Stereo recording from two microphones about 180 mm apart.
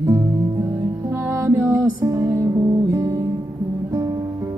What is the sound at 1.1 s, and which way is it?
Music, 15° right (ahead or behind).